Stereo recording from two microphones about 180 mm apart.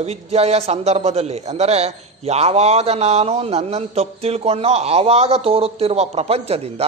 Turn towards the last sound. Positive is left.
turn(degrees=-35)  # may be behind; listen again after turning